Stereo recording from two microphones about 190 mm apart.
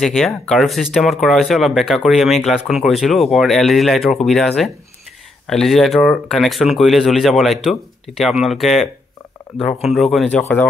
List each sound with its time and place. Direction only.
0.0 s speech: centre (ahead or behind)